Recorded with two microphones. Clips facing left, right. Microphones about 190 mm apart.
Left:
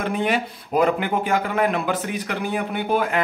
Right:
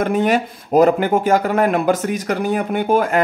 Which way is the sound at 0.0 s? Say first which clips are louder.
Right 6 dB; 45° right (ahead or behind).